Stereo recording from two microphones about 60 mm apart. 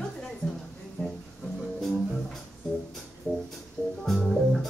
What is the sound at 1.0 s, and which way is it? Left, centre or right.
Music, left.